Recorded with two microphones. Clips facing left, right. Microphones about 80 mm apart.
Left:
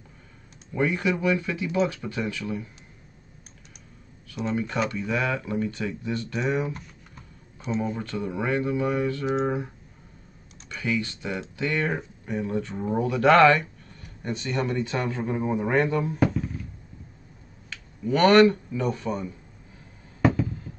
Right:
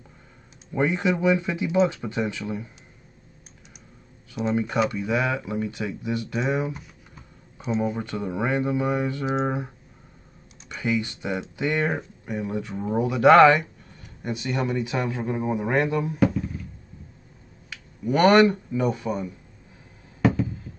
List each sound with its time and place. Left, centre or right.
0.7 s speech: right
4.5 s speech: centre
4.7 s speech: centre
9.2 s speech: centre
10.7 s speech: centre
12.0 s speech: centre
17.6 s speech: centre
20.2 s a sound: centre